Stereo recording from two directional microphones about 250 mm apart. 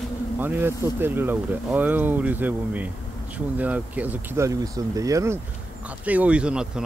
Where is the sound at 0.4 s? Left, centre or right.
Centre.